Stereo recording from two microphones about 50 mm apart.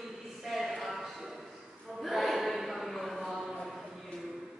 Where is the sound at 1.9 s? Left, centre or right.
Centre.